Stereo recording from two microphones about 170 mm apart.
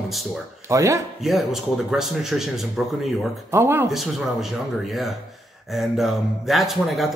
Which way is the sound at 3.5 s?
15° right (ahead or behind).